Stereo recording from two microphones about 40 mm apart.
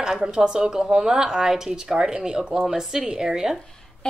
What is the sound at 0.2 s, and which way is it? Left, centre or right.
A woman's voice, right.